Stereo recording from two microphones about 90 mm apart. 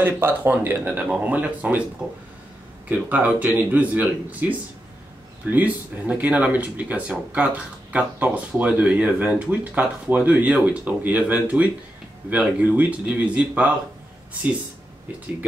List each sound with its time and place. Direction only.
0.2 s speech: 25° right (ahead or behind)
2.0 s speech: 5° right (ahead or behind)